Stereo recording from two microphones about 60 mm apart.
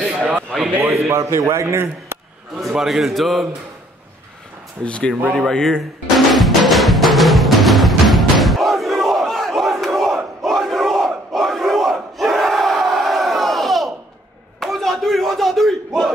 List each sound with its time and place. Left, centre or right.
0.0 s a sound: centre
0.7 s a man's voice: right
2.7 s a man's voice: centre
4.8 s speech: centre
5.5 s drum: centre
10.4 s crowd: centre
14.6 s a sound: centre